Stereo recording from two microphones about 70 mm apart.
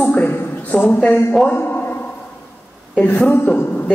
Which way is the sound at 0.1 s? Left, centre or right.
Left.